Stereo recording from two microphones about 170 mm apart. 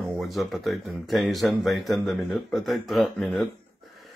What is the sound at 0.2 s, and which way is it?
Speech, centre (ahead or behind).